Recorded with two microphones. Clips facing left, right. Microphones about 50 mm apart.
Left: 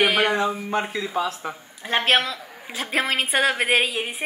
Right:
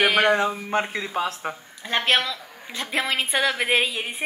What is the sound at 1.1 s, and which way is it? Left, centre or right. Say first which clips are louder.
Speech: left 1 dB; right.